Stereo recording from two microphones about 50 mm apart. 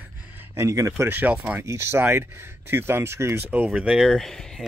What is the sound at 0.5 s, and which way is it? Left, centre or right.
Speech, right.